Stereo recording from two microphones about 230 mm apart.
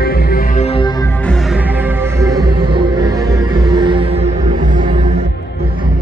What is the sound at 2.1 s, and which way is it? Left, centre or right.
Music, centre.